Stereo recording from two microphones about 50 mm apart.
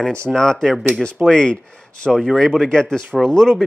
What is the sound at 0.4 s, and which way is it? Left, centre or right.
Speech, centre.